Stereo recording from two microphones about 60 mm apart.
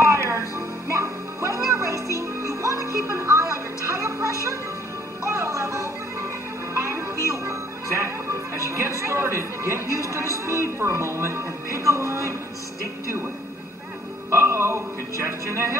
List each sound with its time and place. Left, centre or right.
0.0 s music: right
14.3 s speech: right